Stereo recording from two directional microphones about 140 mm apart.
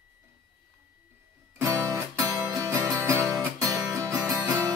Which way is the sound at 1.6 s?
25° right (ahead or behind).